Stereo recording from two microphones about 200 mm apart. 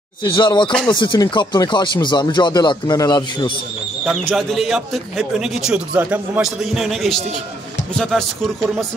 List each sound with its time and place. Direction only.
0.2 s speech: 25° left (ahead or behind)
4.0 s speech: centre (ahead or behind)